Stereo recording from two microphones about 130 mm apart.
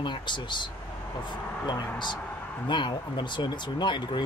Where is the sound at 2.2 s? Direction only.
10° left (ahead or behind).